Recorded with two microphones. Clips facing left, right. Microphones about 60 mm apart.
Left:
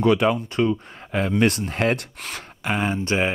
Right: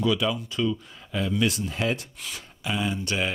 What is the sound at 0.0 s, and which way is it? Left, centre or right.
Speech, left.